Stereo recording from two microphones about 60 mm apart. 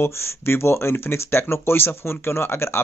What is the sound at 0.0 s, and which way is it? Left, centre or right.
Speech, left.